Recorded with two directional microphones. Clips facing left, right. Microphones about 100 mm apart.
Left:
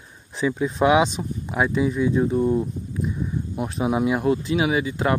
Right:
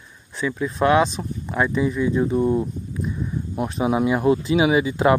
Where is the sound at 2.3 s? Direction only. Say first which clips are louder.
Right 1 dB; 5° right (ahead or behind).